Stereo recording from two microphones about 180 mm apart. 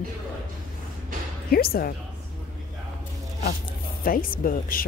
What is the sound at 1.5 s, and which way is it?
Speech, 55° left (ahead or behind).